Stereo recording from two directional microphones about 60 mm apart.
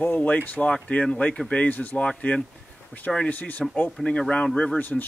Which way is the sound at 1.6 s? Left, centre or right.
Left.